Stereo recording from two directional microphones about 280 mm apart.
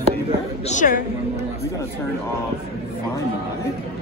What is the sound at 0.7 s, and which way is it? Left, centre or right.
Speech, left.